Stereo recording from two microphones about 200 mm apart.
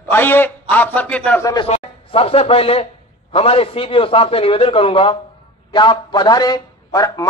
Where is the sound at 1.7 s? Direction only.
30° left (ahead or behind).